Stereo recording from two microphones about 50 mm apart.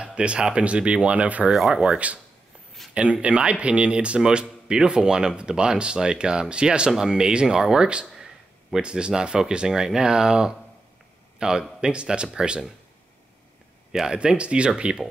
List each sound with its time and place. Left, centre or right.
0.0 s speech: right
1.5 s speech: centre
13.9 s speech: centre